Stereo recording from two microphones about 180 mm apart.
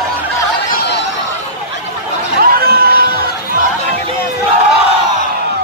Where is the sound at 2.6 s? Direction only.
60° right (ahead or behind).